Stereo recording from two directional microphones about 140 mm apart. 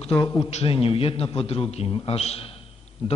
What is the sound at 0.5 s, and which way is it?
A man's voice, 45° left (ahead or behind).